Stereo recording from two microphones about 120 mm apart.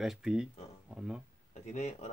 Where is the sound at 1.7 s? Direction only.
70° left (ahead or behind).